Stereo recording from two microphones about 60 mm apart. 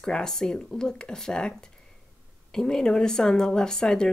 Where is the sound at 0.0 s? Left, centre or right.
Centre.